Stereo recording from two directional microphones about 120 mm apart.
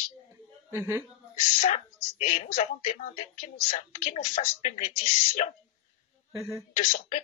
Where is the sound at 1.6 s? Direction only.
80° left.